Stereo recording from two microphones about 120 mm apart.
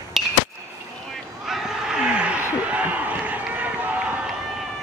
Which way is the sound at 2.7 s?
15° right (ahead or behind).